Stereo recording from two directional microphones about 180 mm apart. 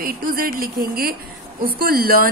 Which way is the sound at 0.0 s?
55° right (ahead or behind).